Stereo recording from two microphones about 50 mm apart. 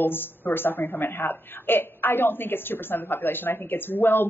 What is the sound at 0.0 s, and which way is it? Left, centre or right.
A woman's voice, left.